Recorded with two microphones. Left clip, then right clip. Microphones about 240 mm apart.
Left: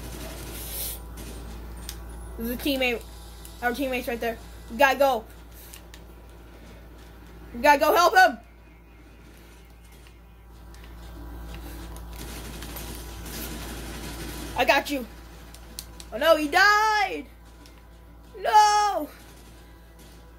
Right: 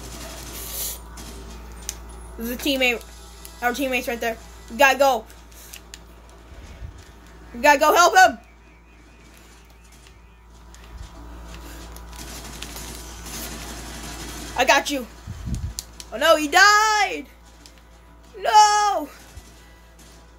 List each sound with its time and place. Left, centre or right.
2.4 s a woman's voice: centre
7.6 s a woman's voice: centre
14.5 s a woman's voice: centre
16.1 s a woman's voice: centre
18.4 s a sound: centre